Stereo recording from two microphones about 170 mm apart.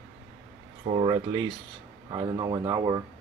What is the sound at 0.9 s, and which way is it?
Speech, 30° right (ahead or behind).